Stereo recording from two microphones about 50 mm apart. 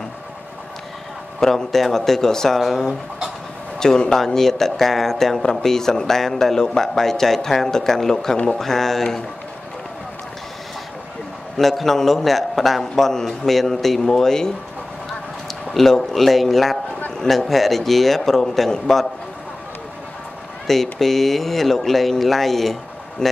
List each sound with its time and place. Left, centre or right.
1.4 s speech: centre
3.8 s speech: centre
11.5 s a man's voice: centre
15.7 s a man's voice: centre
20.6 s a man's voice: centre